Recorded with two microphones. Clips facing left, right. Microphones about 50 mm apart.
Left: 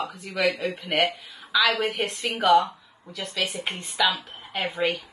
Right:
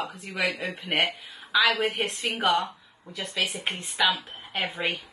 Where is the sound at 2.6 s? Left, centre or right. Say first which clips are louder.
Left 3 dB; right.